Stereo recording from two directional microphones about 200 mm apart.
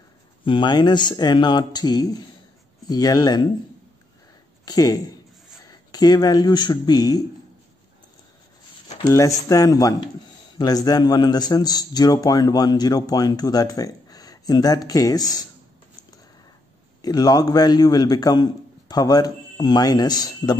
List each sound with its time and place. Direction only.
0.5 s a man's voice: 25° left (ahead or behind)
4.6 s a man's voice: 20° left (ahead or behind)
9.0 s a man's voice: 15° left (ahead or behind)
17.0 s a man's voice: 20° left (ahead or behind)